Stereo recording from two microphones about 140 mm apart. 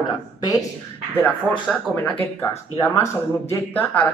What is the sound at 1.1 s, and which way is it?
Speech, 15° left (ahead or behind).